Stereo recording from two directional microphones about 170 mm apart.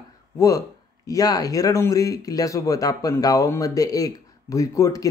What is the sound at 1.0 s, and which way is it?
Speech, 20° left (ahead or behind).